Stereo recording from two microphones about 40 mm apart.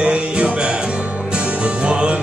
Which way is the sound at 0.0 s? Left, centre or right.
Right.